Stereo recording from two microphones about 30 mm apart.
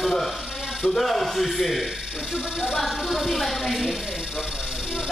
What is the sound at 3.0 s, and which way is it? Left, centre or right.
Speech, centre.